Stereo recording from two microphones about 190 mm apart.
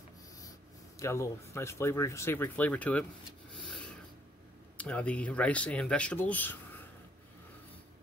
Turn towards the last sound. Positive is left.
turn(degrees=10)  # may be behind; listen again after turning